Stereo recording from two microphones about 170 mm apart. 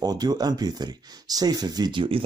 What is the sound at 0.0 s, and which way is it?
Speech, 25° right (ahead or behind).